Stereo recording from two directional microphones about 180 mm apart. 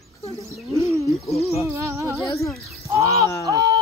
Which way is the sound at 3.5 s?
20° right (ahead or behind).